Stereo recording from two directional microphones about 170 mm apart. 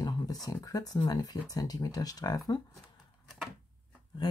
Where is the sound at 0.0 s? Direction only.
20° left (ahead or behind).